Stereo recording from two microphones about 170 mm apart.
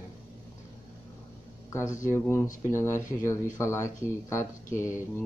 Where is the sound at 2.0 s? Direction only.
15° left (ahead or behind).